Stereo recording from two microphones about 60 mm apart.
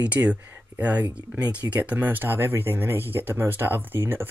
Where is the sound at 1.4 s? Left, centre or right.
Right.